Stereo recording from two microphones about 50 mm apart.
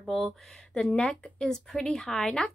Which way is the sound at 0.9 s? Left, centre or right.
Centre.